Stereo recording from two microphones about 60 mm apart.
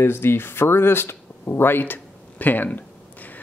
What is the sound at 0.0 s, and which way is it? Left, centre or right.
Speech, left.